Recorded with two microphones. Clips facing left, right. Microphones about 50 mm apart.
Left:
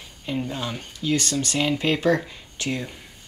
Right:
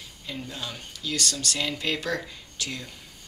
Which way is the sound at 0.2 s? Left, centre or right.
Left.